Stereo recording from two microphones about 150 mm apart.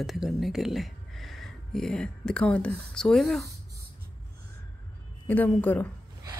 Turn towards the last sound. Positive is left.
turn(degrees=10)  # may be behind; listen again after turning